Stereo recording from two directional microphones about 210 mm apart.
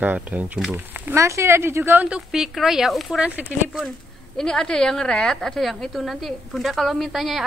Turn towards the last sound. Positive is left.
turn(degrees=0)  # may be behind; listen again after turning